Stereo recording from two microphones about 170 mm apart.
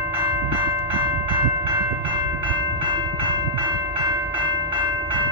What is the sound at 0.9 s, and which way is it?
Train, 30° right (ahead or behind).